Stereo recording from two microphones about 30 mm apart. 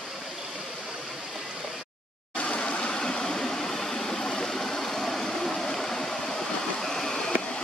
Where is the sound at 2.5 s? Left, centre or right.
Left.